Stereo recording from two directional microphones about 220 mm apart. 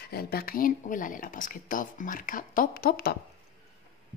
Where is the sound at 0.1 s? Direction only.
45° left (ahead or behind).